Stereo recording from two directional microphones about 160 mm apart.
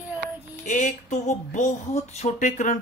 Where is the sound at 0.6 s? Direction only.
50° left (ahead or behind).